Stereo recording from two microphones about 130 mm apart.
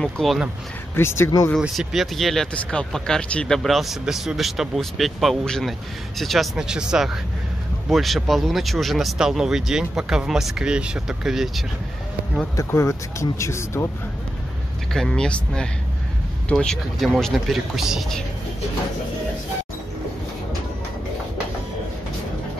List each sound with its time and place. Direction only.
0.0 s speech: centre (ahead or behind)
0.9 s speech: 20° left (ahead or behind)
1.6 s speech: centre (ahead or behind)
12.5 s speech: 25° left (ahead or behind)
14.9 s speech: 5° left (ahead or behind)